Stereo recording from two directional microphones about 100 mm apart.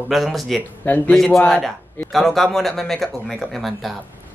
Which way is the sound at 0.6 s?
15° left (ahead or behind).